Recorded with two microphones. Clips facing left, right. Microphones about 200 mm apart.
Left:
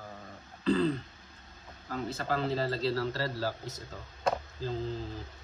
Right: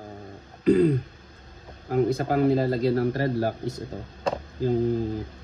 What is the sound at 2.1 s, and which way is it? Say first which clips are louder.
Speech: right 7 dB; 15° right (ahead or behind).